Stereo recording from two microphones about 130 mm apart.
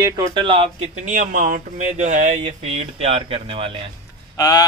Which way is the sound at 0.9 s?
75° right (ahead or behind).